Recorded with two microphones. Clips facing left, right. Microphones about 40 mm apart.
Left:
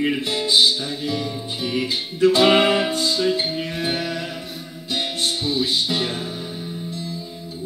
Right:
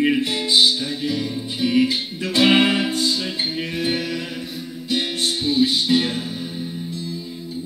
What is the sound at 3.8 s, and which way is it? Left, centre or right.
Music, centre.